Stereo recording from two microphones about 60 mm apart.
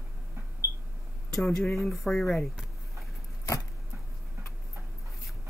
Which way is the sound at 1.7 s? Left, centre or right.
Centre.